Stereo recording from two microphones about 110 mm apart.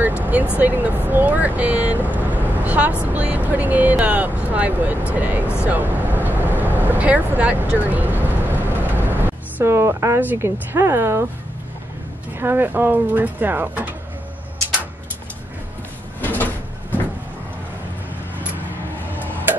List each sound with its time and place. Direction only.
0.6 s speech: 15° right (ahead or behind)
7.8 s vehicle: 15° right (ahead or behind)
12.4 s speech: 20° right (ahead or behind)
16.2 s sliding door: 15° left (ahead or behind)